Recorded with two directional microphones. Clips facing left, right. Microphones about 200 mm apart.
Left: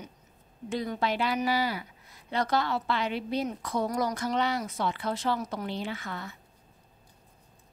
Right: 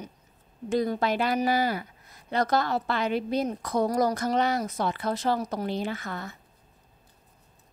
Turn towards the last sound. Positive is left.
turn(degrees=-45)  # may be behind; listen again after turning